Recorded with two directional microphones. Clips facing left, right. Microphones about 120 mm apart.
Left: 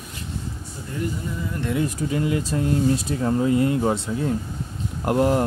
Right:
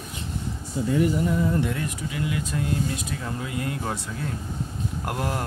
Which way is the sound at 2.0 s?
35° left (ahead or behind).